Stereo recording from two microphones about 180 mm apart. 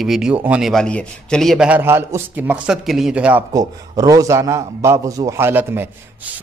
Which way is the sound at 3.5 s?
20° right (ahead or behind).